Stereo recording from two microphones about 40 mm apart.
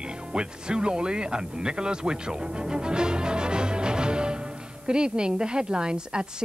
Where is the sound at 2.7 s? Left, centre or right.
Right.